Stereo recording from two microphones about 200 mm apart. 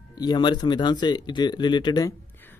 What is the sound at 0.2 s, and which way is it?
A man's voice, 20° left (ahead or behind).